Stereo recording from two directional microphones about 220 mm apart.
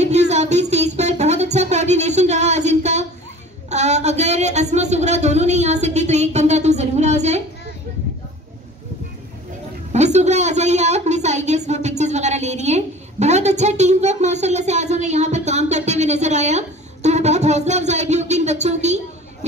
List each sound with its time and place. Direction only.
0.0 s music: 30° right (ahead or behind)
3.7 s speech: 30° right (ahead or behind)
9.9 s a sound: 30° right (ahead or behind)